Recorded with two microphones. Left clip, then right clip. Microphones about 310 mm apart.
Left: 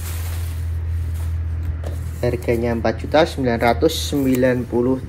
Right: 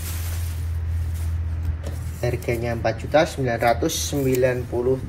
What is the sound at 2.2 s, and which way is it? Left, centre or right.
Speech, left.